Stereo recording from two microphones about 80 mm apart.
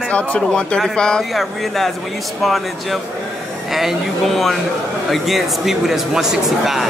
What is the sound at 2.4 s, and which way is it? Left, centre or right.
Speech, centre.